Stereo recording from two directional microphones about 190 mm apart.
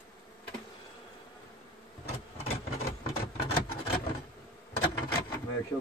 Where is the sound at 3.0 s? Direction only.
55° left (ahead or behind).